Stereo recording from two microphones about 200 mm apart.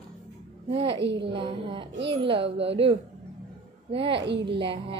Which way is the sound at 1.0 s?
60° right (ahead or behind).